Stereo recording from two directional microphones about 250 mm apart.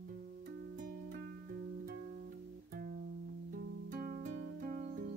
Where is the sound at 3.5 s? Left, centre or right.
Right.